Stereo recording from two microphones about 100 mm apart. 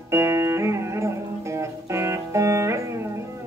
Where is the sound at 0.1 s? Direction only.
30° right (ahead or behind).